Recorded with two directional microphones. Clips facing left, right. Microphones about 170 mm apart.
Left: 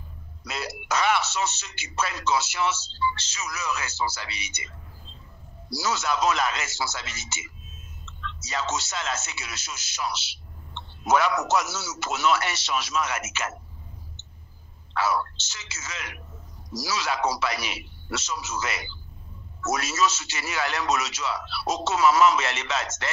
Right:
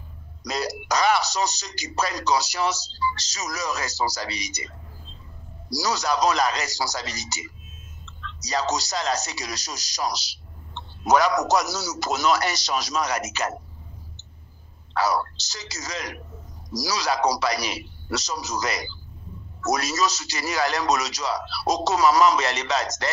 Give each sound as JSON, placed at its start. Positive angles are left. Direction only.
{"t": 0.4, "sound": "speech", "side_deg": -40}
{"t": 15.0, "sound": "speech", "side_deg": -40}